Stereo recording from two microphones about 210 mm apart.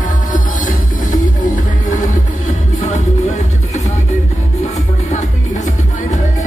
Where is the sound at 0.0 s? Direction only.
35° left (ahead or behind).